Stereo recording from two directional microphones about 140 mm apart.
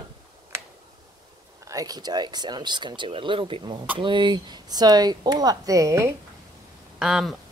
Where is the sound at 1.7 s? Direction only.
25° right (ahead or behind).